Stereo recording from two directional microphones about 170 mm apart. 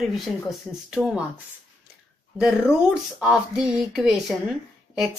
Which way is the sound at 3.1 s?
5° right (ahead or behind).